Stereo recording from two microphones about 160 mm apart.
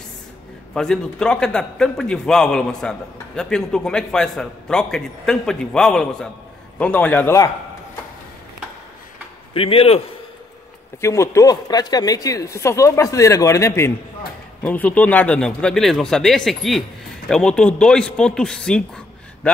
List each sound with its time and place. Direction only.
0.7 s a man's voice: 5° left (ahead or behind)
9.5 s a man's voice: 35° left (ahead or behind)
11.0 s a man's voice: 20° left (ahead or behind)